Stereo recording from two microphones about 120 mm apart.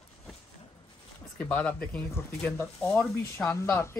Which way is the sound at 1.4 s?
10° left (ahead or behind).